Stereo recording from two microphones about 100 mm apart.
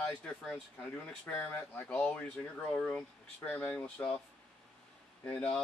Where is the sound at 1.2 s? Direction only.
20° left (ahead or behind).